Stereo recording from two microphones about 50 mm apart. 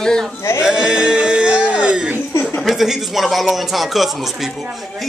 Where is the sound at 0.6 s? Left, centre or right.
Centre.